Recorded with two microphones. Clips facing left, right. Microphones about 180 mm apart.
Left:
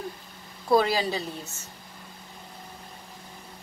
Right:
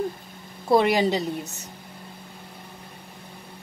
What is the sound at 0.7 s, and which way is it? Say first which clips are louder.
A woman's voice: right 3 dB; 25° right (ahead or behind).